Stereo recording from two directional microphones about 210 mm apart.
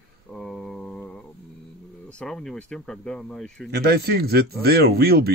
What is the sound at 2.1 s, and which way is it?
Speech, centre (ahead or behind).